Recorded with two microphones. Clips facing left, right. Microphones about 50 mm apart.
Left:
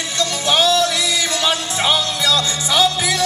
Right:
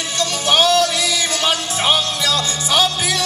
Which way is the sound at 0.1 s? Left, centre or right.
Right.